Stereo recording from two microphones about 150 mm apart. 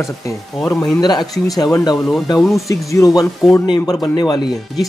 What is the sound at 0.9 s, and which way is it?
Speech, 30° left (ahead or behind).